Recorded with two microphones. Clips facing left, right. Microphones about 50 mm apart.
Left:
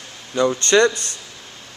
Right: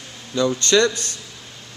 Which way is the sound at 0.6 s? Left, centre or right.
Left.